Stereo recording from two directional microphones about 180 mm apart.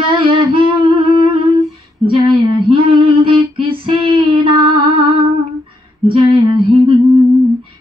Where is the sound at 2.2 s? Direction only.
25° right (ahead or behind).